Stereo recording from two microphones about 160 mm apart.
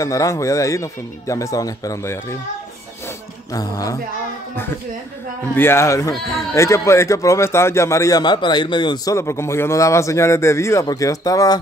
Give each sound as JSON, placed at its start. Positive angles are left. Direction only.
{"t": 0.0, "sound": "speech", "side_deg": 20}
{"t": 3.5, "sound": "speech", "side_deg": 20}
{"t": 5.5, "sound": "speech", "side_deg": 15}